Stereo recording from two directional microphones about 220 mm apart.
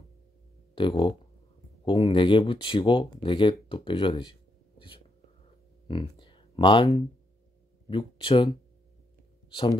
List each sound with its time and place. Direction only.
0.7 s speech: 20° left (ahead or behind)
5.9 s a sound: 20° left (ahead or behind)
7.9 s speech: 25° left (ahead or behind)